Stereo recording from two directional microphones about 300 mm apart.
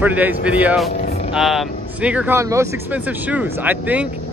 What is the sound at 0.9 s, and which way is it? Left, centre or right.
Vehicle, left.